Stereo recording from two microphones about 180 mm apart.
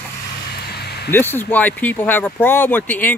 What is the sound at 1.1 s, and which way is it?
Speech, 10° left (ahead or behind).